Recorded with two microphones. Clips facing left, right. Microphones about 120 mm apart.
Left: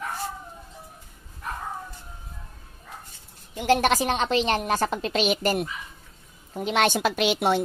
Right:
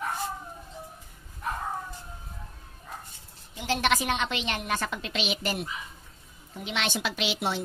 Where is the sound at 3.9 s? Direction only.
35° left (ahead or behind).